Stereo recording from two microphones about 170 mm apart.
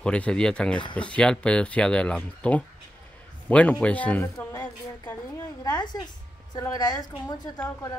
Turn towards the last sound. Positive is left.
turn(degrees=25)  # may be behind; listen again after turning